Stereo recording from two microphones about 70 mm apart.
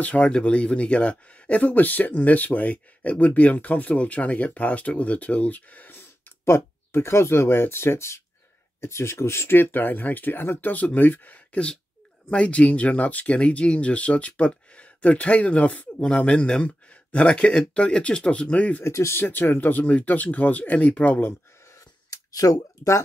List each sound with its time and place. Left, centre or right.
0.0 s speech: centre
10.7 s speech: left
18.9 s speech: left
19.2 s speech: left
21.3 s a sound: left